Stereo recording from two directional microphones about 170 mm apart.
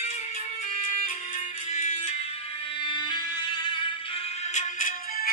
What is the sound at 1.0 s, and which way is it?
Music, 50° left (ahead or behind).